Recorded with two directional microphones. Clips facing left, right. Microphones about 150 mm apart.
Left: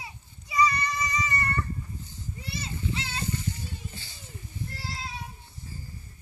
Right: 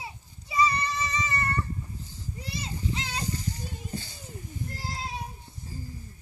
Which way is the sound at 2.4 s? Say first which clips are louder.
Even; 40° right (ahead or behind).